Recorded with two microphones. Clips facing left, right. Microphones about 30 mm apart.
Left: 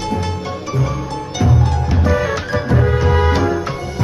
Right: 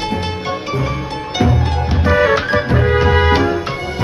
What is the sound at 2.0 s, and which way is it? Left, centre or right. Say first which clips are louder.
Music: right 7 dB; right.